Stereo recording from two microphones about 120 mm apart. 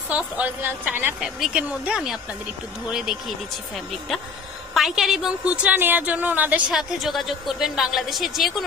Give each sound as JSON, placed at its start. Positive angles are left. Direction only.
{"t": 0.1, "sound": "a woman's voice", "side_deg": -15}
{"t": 6.7, "sound": "a woman's voice", "side_deg": -5}